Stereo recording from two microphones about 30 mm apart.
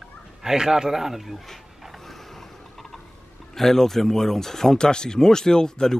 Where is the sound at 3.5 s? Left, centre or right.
Centre.